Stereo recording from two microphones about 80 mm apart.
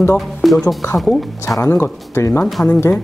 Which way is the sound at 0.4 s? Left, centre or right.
Centre.